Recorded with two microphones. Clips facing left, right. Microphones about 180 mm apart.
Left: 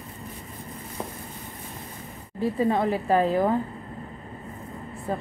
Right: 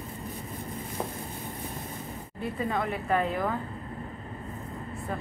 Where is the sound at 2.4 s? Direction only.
30° left (ahead or behind).